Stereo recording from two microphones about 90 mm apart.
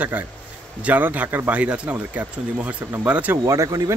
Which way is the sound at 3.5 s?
35° right (ahead or behind).